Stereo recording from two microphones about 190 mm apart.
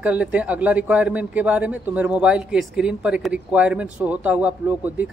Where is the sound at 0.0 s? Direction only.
5° right (ahead or behind).